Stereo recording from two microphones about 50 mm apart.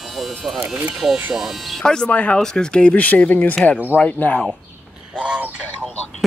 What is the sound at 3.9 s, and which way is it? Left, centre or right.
Speech, right.